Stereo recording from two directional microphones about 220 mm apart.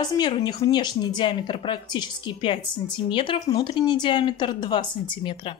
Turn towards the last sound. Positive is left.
turn(degrees=20)  # may be behind; listen again after turning